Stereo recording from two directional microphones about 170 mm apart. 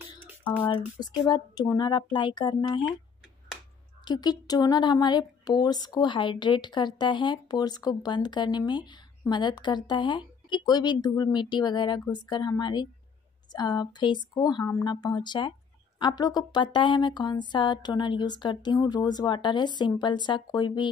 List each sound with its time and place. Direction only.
0.4 s a sound: 10° left (ahead or behind)
0.7 s speech: 25° left (ahead or behind)
4.0 s speech: 25° left (ahead or behind)